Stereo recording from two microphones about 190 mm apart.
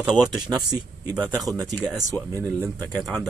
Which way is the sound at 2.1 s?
10° left (ahead or behind).